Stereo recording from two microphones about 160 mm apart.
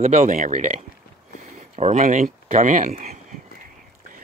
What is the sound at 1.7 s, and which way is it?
Speech, 45° right (ahead or behind).